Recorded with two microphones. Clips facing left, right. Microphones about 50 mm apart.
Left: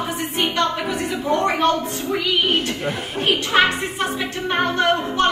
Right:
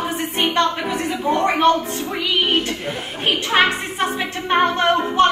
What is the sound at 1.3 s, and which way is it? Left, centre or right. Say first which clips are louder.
Speech: right 1 dB; right.